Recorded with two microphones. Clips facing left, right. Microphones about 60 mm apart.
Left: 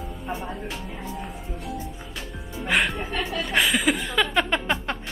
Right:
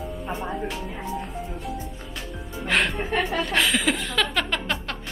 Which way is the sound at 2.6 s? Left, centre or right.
Centre.